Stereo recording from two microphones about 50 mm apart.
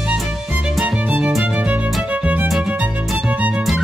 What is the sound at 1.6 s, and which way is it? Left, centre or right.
Music, right.